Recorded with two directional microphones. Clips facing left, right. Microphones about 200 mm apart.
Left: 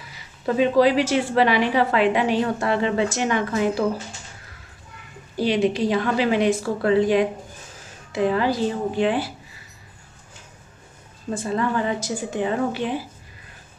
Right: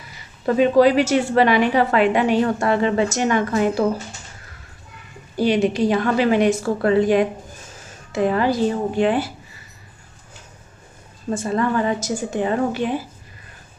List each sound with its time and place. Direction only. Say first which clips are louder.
0.6 s a woman's voice: right 3 dB; 45° right (ahead or behind)
5.4 s a woman's voice: right 3 dB; 45° right (ahead or behind)
11.3 s a woman's voice: right 3 dB; 45° right (ahead or behind)